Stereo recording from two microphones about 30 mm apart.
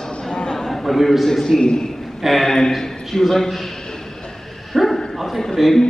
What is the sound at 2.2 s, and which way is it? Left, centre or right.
Speech, centre.